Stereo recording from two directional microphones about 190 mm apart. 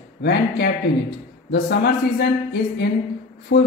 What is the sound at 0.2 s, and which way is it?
Speech, 60° left (ahead or behind).